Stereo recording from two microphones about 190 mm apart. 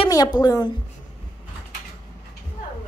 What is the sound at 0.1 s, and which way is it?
Speech, 20° left (ahead or behind).